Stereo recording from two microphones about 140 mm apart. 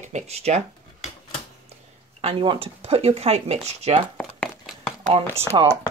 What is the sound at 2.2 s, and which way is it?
Speech, 40° right (ahead or behind).